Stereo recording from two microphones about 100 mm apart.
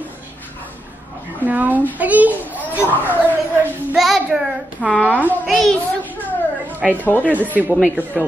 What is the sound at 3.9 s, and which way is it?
Child singing, 5° right (ahead or behind).